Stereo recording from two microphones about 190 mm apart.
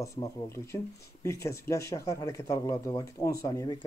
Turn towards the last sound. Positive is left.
turn(degrees=20)  # may be behind; listen again after turning